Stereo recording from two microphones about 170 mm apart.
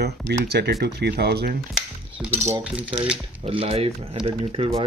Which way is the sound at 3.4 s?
35° right (ahead or behind).